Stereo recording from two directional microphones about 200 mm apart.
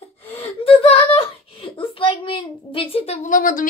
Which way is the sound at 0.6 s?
30° left (ahead or behind).